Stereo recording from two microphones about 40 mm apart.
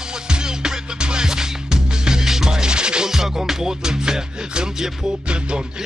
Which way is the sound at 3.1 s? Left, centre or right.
Centre.